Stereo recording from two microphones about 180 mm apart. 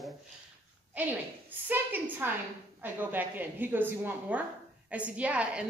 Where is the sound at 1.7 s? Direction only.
10° right (ahead or behind).